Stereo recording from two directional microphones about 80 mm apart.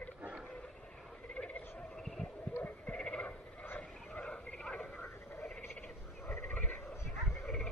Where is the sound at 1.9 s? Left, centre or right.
Centre.